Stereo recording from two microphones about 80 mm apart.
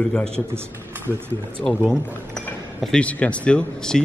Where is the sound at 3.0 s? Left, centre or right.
Centre.